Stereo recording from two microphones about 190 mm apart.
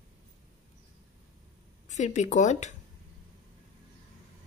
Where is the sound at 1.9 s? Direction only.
40° left (ahead or behind).